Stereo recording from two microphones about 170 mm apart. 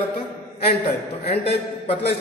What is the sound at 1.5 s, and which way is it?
Speech, 35° left (ahead or behind).